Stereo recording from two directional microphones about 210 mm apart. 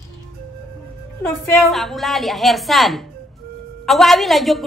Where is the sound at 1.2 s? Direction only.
Centre (ahead or behind).